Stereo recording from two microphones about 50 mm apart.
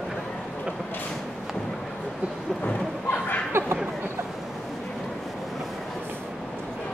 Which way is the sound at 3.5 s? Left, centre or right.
Right.